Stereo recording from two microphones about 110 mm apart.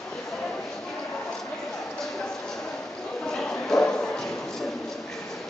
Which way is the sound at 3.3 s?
5° left (ahead or behind).